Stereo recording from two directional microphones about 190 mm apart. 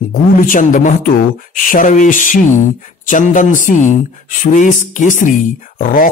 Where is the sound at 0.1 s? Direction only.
45° left (ahead or behind).